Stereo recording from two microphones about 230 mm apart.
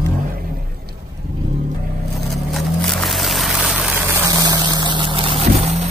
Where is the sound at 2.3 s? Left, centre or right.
Centre.